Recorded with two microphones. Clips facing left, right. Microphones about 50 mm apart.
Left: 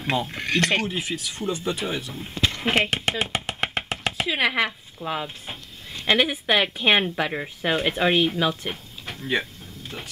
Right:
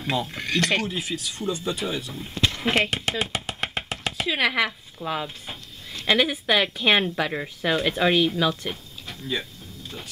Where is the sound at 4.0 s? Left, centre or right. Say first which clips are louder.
Even; centre.